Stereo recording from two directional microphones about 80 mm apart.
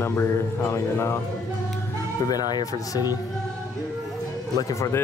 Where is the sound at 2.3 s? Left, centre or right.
Left.